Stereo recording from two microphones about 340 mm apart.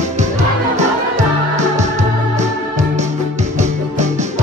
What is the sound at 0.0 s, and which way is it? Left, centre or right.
Music, right.